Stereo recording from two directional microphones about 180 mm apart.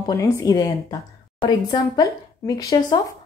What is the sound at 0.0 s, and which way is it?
A woman's voice, 20° left (ahead or behind).